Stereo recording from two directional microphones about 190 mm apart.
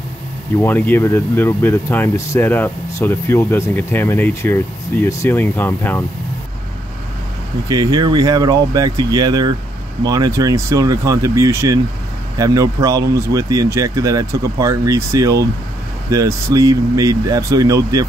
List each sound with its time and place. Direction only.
0.6 s speech: 10° left (ahead or behind)
7.6 s speech: 20° right (ahead or behind)